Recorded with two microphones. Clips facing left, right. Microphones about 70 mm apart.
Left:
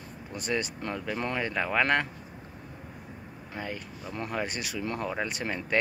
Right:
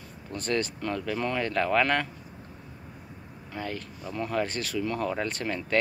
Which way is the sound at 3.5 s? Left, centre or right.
Centre.